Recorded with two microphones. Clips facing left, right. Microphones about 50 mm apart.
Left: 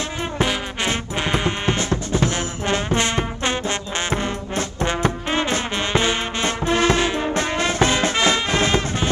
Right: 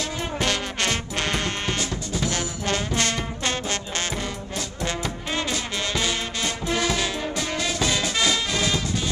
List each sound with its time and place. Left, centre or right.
0.4 s music: centre
1.8 s music: left
2.3 s music: left
5.3 s brass instrument: left
6.6 s music: left
7.3 s music: left